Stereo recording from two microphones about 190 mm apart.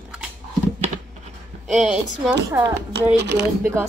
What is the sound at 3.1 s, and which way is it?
Speech, 65° right (ahead or behind).